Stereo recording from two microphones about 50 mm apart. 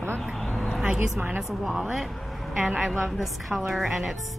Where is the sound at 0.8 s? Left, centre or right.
Right.